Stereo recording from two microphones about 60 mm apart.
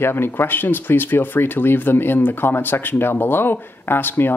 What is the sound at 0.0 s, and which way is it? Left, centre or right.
Speech, left.